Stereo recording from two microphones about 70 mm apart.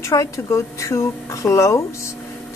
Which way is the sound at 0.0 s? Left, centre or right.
Left.